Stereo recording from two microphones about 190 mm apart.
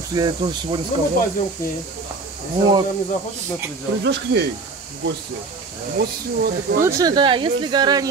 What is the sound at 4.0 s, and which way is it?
Speech, 65° right (ahead or behind).